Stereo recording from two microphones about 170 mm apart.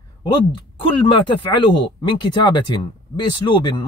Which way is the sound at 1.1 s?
30° left (ahead or behind).